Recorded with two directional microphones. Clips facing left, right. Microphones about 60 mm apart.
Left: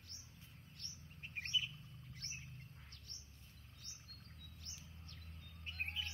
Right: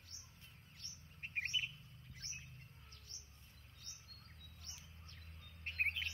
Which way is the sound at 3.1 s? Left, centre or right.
Centre.